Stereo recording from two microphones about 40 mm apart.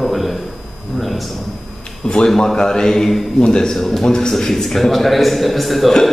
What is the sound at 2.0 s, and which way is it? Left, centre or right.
A man's voice, centre.